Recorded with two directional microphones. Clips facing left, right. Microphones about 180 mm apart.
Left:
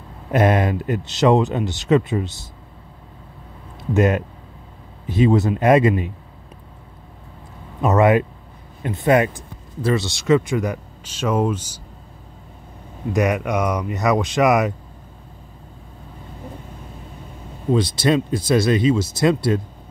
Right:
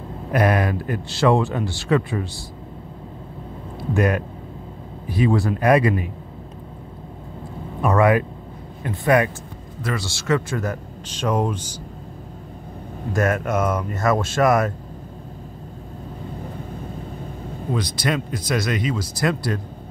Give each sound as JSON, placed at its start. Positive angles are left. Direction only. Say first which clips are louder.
{"t": 0.3, "sound": "speech", "louder": "left 2 dB", "side_deg": 25}
{"t": 3.9, "sound": "speech", "louder": "left 3 dB", "side_deg": 25}
{"t": 7.8, "sound": "a man's voice", "louder": "left 2 dB", "side_deg": 20}
{"t": 13.1, "sound": "a man's voice", "louder": "left 1 dB", "side_deg": 15}
{"t": 17.7, "sound": "speech", "louder": "left 6 dB", "side_deg": 25}